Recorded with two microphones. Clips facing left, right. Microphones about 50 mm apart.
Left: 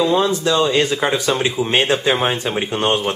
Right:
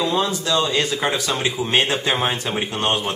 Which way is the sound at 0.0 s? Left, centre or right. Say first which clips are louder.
Left 5 dB; centre.